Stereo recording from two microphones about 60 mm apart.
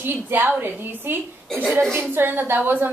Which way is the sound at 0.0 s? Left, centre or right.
Right.